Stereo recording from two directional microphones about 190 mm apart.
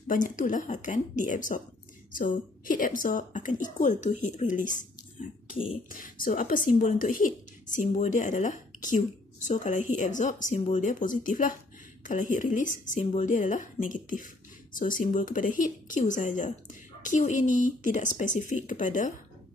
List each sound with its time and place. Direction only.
0.1 s speech: 45° left (ahead or behind)
5.9 s speech: 45° left (ahead or behind)